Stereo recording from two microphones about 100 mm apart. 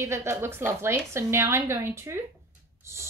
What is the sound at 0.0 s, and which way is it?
A woman's voice, 25° right (ahead or behind).